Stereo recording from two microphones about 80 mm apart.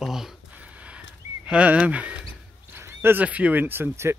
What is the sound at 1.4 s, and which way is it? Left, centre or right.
Speech, centre.